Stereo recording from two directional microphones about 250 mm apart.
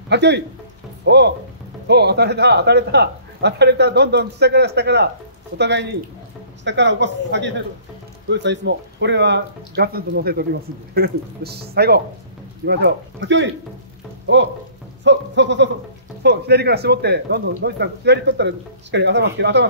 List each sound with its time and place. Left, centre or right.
0.1 s speech: right
14.2 s frying: right
15.0 s speech: right